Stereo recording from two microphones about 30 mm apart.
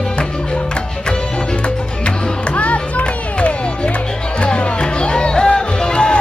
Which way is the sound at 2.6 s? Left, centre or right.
Left.